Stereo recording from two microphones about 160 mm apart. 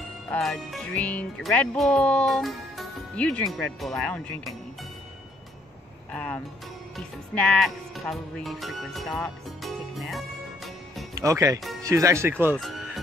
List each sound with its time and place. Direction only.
0.3 s speech: 5° left (ahead or behind)
6.1 s music: 10° left (ahead or behind)
11.1 s speech: 20° right (ahead or behind)
12.5 s speech: centre (ahead or behind)